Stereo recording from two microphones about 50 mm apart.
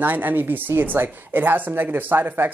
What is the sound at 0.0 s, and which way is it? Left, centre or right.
Speech, right.